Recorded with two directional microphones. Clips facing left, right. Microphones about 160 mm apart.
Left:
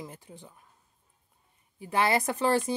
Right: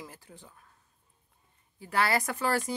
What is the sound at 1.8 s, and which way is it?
Speech, 20° left (ahead or behind).